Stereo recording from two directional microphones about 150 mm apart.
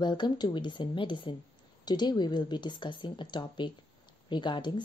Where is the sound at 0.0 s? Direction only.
30° left (ahead or behind).